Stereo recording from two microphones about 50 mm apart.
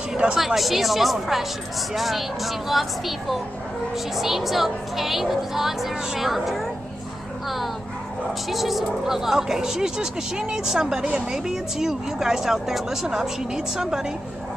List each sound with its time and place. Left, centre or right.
0.2 s a woman's voice: right
0.6 s a woman's voice: centre